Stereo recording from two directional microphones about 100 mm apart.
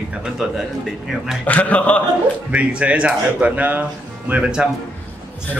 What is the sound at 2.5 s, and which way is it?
Speech, 10° right (ahead or behind).